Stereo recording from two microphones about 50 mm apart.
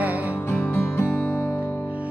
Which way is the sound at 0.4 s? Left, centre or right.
Left.